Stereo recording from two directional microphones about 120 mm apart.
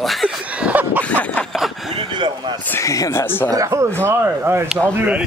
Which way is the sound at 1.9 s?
45° right (ahead or behind).